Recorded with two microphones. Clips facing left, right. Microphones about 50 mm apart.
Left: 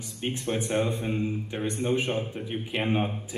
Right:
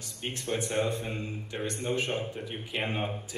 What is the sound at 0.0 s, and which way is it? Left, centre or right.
Speech, centre.